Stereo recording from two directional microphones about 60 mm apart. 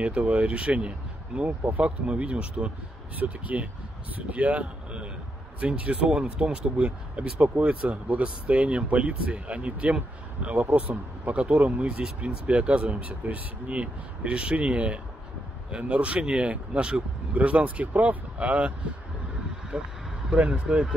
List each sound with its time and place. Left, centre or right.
0.0 s speech: right
19.7 s speech: centre